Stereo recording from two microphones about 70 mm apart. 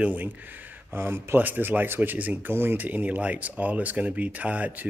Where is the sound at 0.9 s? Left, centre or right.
Right.